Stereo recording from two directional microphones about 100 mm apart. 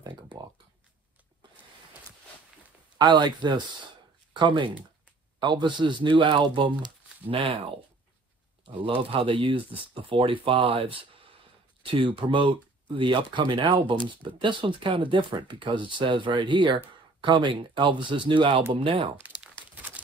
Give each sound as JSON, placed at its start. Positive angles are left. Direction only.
{"t": 0.0, "sound": "a sound", "side_deg": -45}
{"t": 3.0, "sound": "speech", "side_deg": -45}
{"t": 8.6, "sound": "speech", "side_deg": -60}